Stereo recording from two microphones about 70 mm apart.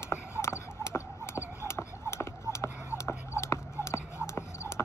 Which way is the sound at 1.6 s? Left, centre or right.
Left.